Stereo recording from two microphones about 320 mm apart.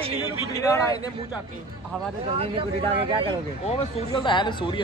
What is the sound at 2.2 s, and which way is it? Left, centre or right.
Speech, centre.